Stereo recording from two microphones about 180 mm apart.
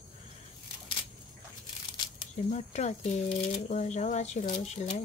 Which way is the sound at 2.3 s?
40° left (ahead or behind).